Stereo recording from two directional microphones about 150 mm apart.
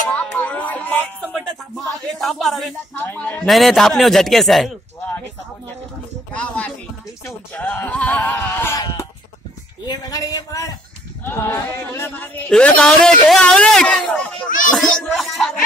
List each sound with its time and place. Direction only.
0.1 s music: 10° left (ahead or behind)
2.1 s speech: centre (ahead or behind)
3.0 s speech: 10° left (ahead or behind)
3.4 s a man's voice: centre (ahead or behind)
6.3 s a sound: 10° left (ahead or behind)
7.2 s speech: 10° left (ahead or behind)
9.8 s a man's voice: 25° left (ahead or behind); by 15.5 s centre (ahead or behind)